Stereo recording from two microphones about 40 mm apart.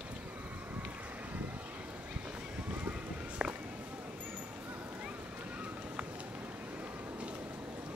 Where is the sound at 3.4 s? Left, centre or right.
Right.